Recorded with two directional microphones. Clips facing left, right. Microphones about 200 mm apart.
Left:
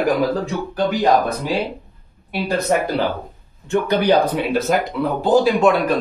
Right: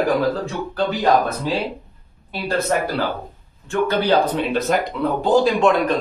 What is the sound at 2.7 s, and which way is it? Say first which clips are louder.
Speech: left 3 dB; 15° left (ahead or behind).